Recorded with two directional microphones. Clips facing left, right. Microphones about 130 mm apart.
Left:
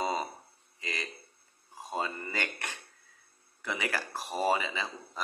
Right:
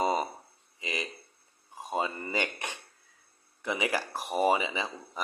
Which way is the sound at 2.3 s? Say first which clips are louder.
Right 4 dB; 20° right (ahead or behind).